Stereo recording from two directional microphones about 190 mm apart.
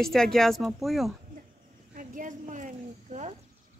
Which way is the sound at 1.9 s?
45° right (ahead or behind).